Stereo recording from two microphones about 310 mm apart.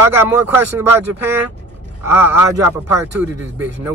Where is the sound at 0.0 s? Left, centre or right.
Centre.